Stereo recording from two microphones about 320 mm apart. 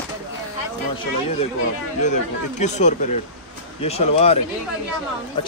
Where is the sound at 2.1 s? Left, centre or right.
Left.